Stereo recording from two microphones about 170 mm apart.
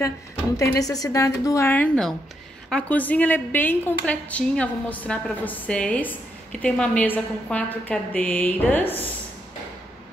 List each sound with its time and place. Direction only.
0.6 s a woman's voice: 20° left (ahead or behind)